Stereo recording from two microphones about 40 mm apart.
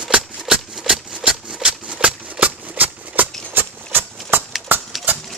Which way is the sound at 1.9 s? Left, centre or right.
Right.